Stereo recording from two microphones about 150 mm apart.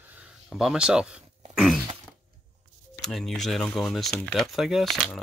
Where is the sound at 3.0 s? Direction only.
Centre (ahead or behind).